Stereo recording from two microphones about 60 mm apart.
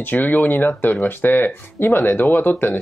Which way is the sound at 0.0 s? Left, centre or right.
Left.